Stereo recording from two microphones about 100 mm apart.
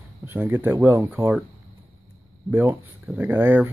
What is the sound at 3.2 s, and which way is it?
Speech, 20° right (ahead or behind).